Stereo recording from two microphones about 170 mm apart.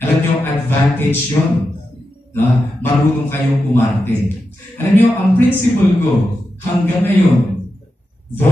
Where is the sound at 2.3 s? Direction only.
10° left (ahead or behind).